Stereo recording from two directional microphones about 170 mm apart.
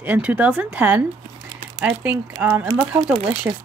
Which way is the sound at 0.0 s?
10° right (ahead or behind).